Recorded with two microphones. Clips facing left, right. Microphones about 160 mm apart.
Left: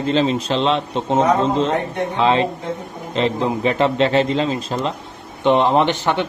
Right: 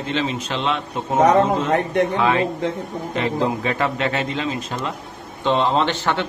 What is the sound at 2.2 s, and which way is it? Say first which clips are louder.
A man's voice: left 2 dB; 20° left (ahead or behind).